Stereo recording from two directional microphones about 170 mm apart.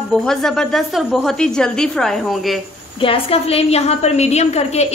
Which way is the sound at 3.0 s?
35° left (ahead or behind).